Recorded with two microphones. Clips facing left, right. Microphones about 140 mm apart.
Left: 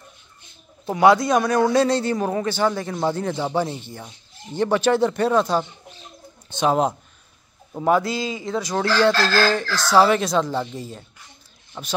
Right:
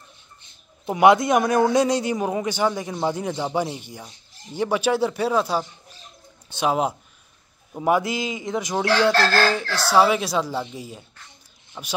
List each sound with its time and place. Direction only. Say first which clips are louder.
0.8 s a man's voice: even; 20° right (ahead or behind)
4.6 s a man's voice: left 3 dB; 10° right (ahead or behind)
9.1 s speech: even; 60° right (ahead or behind)
9.8 s a man's voice: left 2 dB; 5° right (ahead or behind)